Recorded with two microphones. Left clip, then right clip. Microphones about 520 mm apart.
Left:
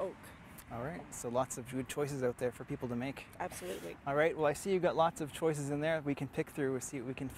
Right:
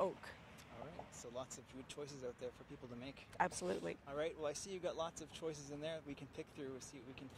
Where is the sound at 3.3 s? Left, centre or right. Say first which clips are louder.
Right 5 dB; right.